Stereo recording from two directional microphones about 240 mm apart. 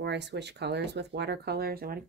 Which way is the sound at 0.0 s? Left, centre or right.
Right.